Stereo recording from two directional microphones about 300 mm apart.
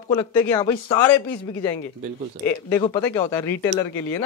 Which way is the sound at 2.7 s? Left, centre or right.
Centre.